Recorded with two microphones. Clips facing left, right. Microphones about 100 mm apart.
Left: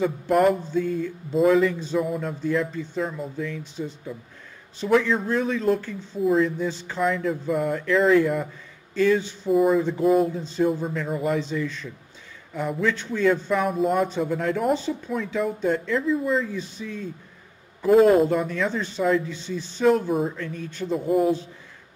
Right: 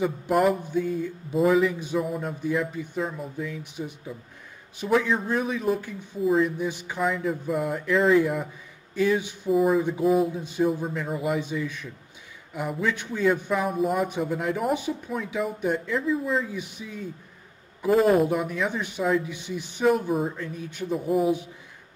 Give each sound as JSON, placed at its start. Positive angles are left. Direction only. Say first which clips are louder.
{"t": 0.3, "sound": "speech", "louder": "left 3 dB", "side_deg": -5}
{"t": 0.6, "sound": "a man's voice", "louder": "left 2 dB", "side_deg": -15}
{"t": 7.0, "sound": "speech", "louder": "left 2 dB", "side_deg": -5}
{"t": 8.9, "sound": "speech", "louder": "left 3 dB", "side_deg": -15}
{"t": 9.5, "sound": "speech", "louder": "left 2 dB", "side_deg": 0}
{"t": 10.3, "sound": "speech", "louder": "left 1 dB", "side_deg": -15}
{"t": 16.0, "sound": "speech", "louder": "left 2 dB", "side_deg": 0}
{"t": 16.4, "sound": "speech", "louder": "left 3 dB", "side_deg": -15}
{"t": 17.8, "sound": "speech", "louder": "left 4 dB", "side_deg": 0}
{"t": 20.1, "sound": "speech", "louder": "left 2 dB", "side_deg": 0}
{"t": 20.3, "sound": "speech", "louder": "left 2 dB", "side_deg": -15}
{"t": 20.9, "sound": "speech", "louder": "left 2 dB", "side_deg": 0}